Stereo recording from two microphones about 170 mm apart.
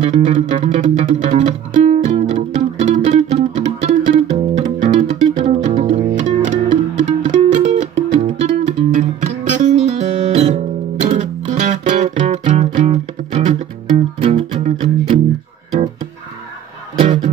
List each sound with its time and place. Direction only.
0.0 s music: 40° right (ahead or behind)
17.0 s music: 40° right (ahead or behind)